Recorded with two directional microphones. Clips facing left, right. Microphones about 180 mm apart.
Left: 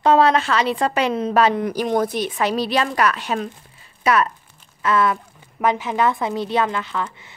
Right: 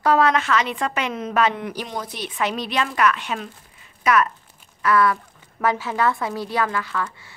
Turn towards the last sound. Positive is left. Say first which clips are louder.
# left 1 dB
turn(degrees=20)  # may be behind; listen again after turning